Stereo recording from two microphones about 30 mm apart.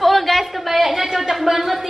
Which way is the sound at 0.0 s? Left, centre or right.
Centre.